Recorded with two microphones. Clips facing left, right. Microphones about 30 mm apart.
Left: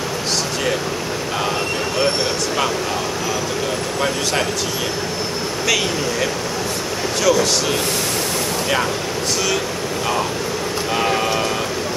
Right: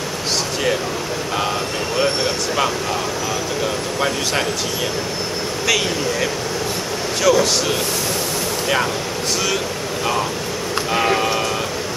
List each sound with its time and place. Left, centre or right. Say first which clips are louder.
2.0 s speech: right 1 dB; centre
7.2 s speech: right 1 dB; centre
10.9 s a sound: right 1 dB; centre